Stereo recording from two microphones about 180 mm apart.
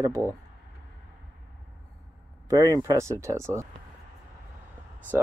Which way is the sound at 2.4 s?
20° right (ahead or behind).